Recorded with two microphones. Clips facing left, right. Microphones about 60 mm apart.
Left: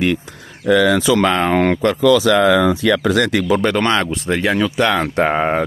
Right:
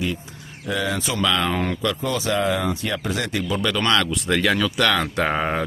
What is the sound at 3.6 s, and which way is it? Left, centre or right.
Speech, left.